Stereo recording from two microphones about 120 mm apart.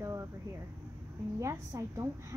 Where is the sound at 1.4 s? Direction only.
25° right (ahead or behind).